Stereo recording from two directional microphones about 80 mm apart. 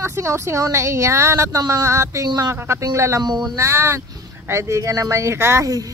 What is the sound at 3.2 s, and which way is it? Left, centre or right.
Speech, right.